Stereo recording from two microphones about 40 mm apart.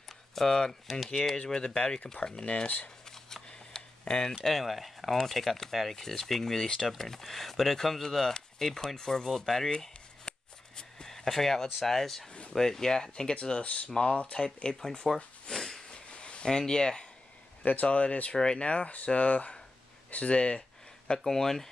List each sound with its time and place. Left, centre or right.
0.3 s speech: centre
0.8 s speech: centre
1.1 s speech: centre
3.4 s a sound: left
4.1 s speech: centre
4.5 s speech: centre
9.7 s a sound: centre
10.8 s speech: centre
15.5 s a sound: centre
15.9 s a sound: left
16.4 s speech: centre
17.6 s speech: left
18.3 s speech: left
21.2 s speech: centre